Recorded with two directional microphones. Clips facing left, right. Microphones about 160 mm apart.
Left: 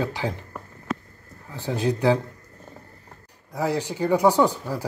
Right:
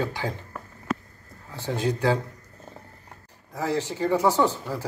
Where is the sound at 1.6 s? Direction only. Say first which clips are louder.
Left 2 dB; 15° left (ahead or behind).